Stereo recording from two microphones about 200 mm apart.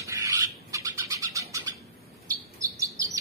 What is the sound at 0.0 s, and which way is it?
Bird, 15° right (ahead or behind).